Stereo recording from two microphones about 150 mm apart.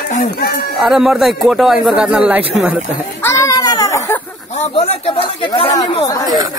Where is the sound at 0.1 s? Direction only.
80° left.